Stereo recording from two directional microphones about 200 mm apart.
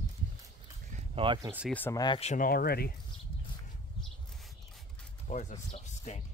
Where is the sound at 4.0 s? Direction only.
Centre (ahead or behind).